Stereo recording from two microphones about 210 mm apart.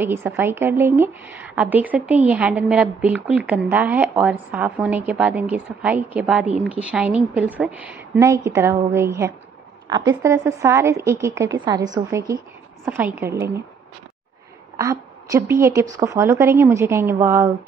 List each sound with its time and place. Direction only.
0.0 s a woman's voice: 10° right (ahead or behind)
14.8 s a woman's voice: 15° right (ahead or behind)